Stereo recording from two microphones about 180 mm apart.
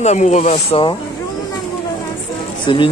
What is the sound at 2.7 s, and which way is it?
Speech, 25° left (ahead or behind).